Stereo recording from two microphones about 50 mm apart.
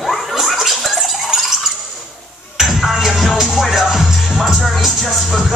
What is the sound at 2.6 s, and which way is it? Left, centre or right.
Music, centre.